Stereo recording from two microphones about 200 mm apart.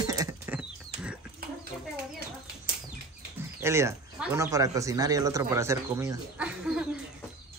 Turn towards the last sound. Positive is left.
turn(degrees=-5)  # may be behind; listen again after turning